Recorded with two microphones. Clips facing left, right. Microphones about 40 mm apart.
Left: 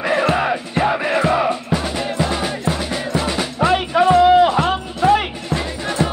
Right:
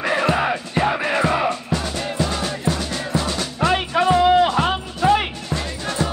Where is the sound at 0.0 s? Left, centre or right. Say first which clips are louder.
Left 2 dB; centre.